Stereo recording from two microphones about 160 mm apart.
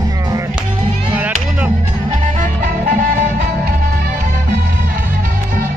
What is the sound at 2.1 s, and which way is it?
Music, 55° right (ahead or behind).